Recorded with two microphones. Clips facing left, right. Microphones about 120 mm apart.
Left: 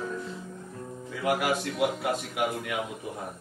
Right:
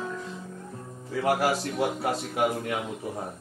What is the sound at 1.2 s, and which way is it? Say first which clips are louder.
A man's voice: right 2 dB; 35° right (ahead or behind).